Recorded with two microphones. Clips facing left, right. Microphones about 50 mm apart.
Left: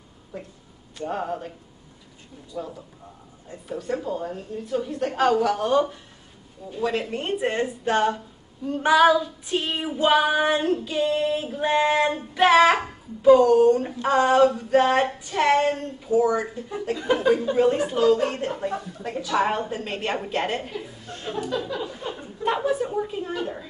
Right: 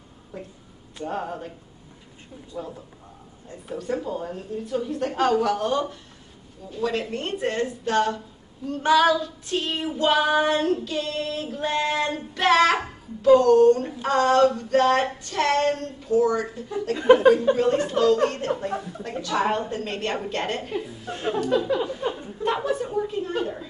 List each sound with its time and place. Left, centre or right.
0.3 s a woman's voice: centre
2.5 s a man's voice: centre
3.7 s a woman's voice: centre
6.7 s female singing: centre
16.9 s a sound: right
17.6 s female singing: centre
21.5 s a sound: right
22.1 s a woman's voice: centre
23.4 s female singing: centre